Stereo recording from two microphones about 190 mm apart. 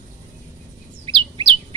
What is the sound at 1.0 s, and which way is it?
Bird, 25° right (ahead or behind).